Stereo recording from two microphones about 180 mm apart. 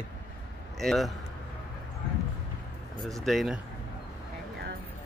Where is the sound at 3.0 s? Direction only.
Centre (ahead or behind).